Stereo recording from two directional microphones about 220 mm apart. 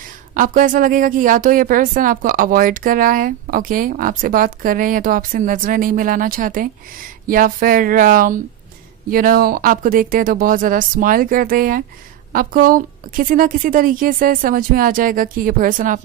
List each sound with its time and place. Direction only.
0.3 s a woman's voice: 40° right (ahead or behind)